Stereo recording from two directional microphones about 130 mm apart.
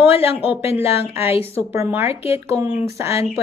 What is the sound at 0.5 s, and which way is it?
Speech, 15° right (ahead or behind).